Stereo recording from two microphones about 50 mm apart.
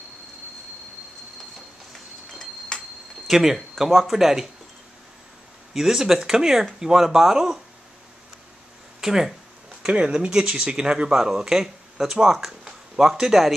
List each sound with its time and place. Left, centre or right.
2.7 s a sound: centre
3.3 s speech: centre
5.7 s speech: centre
9.0 s speech: centre
9.8 s speech: centre